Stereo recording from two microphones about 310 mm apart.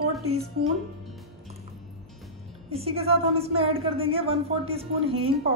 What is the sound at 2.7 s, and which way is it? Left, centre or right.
Speech, centre.